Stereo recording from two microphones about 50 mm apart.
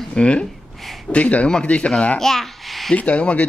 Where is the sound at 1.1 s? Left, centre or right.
Left.